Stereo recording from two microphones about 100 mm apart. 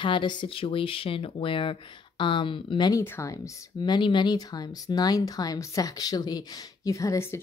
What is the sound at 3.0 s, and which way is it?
Speech, 30° left (ahead or behind).